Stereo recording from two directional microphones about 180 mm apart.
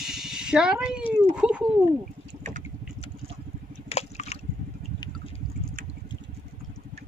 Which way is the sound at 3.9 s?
35° left (ahead or behind).